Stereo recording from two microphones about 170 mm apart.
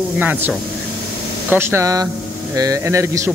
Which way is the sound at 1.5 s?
15° right (ahead or behind).